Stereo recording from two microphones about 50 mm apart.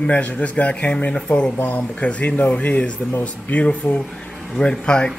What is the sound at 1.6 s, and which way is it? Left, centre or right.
Speech, left.